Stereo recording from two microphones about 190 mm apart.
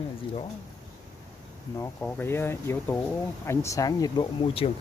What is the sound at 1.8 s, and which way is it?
Speech, 10° left (ahead or behind).